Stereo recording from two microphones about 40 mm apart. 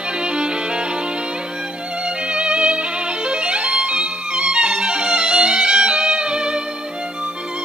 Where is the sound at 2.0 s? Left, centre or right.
Right.